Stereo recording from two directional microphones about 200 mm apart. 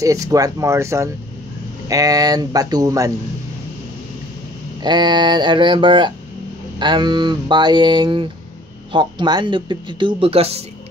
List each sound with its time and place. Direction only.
0.0 s speech: 15° right (ahead or behind)
4.8 s speech: 20° right (ahead or behind)